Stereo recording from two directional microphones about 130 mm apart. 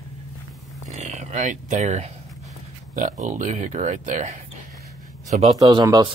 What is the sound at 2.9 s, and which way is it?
Speech, 80° right.